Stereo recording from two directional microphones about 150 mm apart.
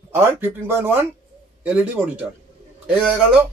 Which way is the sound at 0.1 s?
15° right (ahead or behind).